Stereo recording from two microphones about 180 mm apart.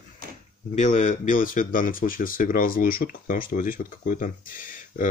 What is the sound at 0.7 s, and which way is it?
Speech, 45° left (ahead or behind).